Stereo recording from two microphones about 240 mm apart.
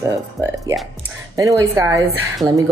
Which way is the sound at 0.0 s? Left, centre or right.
Centre.